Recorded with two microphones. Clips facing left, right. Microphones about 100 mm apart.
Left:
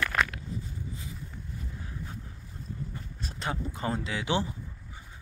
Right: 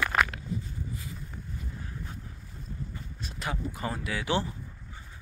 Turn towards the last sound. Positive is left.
turn(degrees=20)  # may be behind; listen again after turning